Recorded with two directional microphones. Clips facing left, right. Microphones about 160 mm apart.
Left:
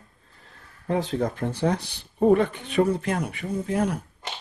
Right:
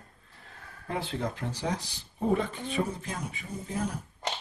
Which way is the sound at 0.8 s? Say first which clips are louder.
Left 8 dB; 40° left (ahead or behind).